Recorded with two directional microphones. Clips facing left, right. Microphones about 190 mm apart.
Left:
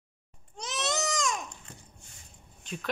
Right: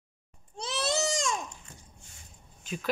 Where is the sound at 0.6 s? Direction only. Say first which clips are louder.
Right 2 dB; 30° right (ahead or behind).